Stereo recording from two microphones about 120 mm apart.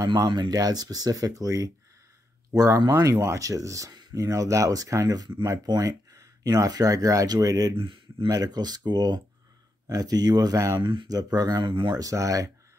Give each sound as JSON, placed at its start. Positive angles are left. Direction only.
{"t": 0.0, "sound": "speech", "side_deg": -35}
{"t": 7.7, "sound": "speech", "side_deg": -45}
{"t": 8.3, "sound": "speech", "side_deg": -35}
{"t": 10.8, "sound": "speech", "side_deg": -40}